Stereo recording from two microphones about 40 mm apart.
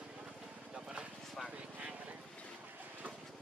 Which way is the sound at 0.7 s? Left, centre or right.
Right.